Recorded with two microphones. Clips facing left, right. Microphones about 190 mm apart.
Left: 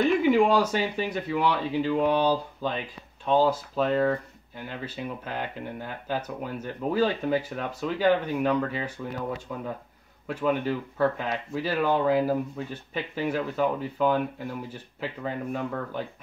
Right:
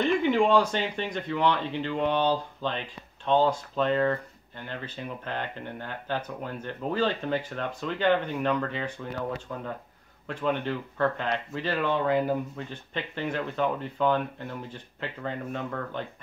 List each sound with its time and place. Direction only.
0.0 s speech: 5° left (ahead or behind)